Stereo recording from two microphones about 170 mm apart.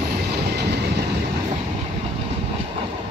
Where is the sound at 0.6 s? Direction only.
80° right.